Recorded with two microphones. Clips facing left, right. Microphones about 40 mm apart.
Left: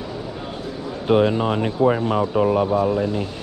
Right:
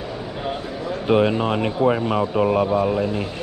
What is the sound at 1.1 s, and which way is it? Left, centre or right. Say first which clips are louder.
Speech: left 1 dB; right.